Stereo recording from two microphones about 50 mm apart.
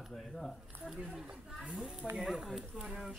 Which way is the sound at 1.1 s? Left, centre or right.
Centre.